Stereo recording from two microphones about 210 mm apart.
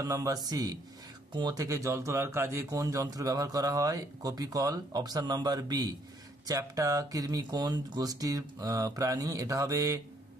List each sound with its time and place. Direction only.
0.0 s speech: 15° right (ahead or behind)